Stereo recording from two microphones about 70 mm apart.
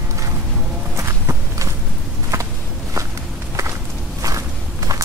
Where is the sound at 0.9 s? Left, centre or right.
Right.